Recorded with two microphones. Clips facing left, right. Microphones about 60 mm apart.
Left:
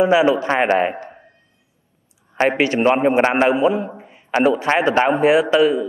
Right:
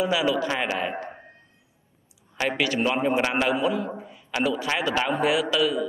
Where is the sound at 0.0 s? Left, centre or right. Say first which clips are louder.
Left 9 dB; left.